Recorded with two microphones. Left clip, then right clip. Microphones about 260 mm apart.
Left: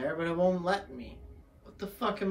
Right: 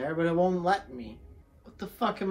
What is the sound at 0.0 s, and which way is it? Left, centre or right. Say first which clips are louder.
A woman's voice: right 2 dB; right.